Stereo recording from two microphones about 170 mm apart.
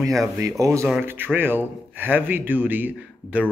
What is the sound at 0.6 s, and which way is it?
Speech, 15° right (ahead or behind).